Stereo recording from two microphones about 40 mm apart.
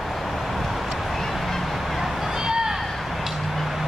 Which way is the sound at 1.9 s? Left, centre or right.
Centre.